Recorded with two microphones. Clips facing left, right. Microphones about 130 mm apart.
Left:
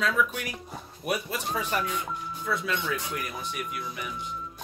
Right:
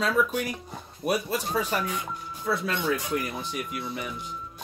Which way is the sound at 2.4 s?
35° right (ahead or behind).